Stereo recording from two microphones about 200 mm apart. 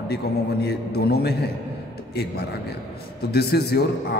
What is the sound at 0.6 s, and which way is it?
A man's voice, 50° left (ahead or behind).